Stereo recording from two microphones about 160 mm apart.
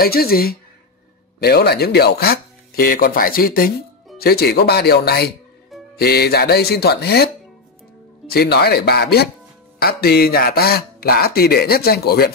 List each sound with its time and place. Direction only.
0.0 s speech: 70° left (ahead or behind); by 7.2 s 90° left
8.3 s speech: 80° left